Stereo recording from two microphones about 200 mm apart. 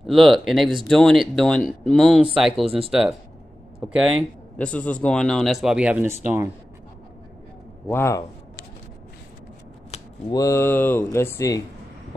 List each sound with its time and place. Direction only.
0.0 s speech: centre (ahead or behind)
7.9 s speech: 15° left (ahead or behind)
10.3 s speech: 15° left (ahead or behind)